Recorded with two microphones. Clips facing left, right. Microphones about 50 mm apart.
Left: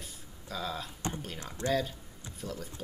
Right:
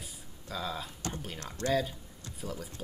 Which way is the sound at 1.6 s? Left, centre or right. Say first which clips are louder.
Even; centre.